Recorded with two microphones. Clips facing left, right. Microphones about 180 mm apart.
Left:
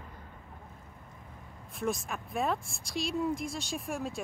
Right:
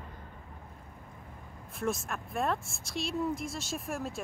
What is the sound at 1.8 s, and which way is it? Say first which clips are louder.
Speech: even; centre (ahead or behind).